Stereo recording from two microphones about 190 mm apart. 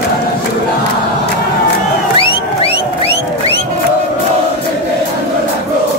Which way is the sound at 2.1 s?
30° left (ahead or behind).